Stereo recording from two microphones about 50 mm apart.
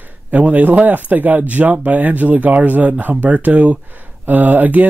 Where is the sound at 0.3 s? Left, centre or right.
Right.